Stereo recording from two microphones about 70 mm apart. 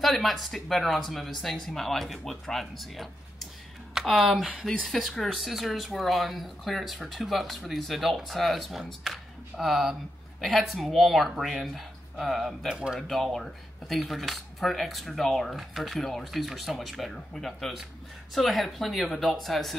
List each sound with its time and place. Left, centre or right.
0.0 s speech: centre
4.4 s speech: centre
4.8 s speech: centre
13.0 s speech: centre